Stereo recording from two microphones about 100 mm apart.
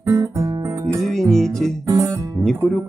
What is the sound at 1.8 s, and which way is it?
Music, 30° right (ahead or behind).